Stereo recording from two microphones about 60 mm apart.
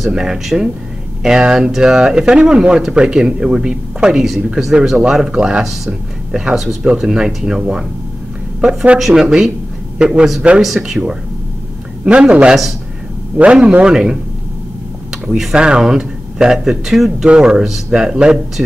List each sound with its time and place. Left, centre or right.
0.0 s speech: centre
6.5 s a man's voice: centre
15.2 s speech: centre